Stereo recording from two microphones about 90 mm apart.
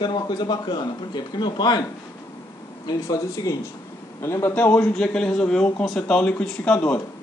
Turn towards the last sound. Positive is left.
turn(degrees=10)  # may be behind; listen again after turning